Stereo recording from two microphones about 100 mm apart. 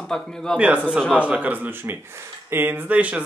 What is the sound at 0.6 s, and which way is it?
Speech, 10° right (ahead or behind).